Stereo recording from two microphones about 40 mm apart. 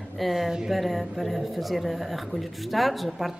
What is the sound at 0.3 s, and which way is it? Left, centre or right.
Speech, centre.